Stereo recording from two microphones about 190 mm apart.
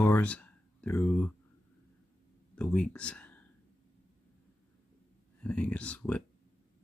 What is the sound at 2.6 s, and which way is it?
Speech, 5° left (ahead or behind).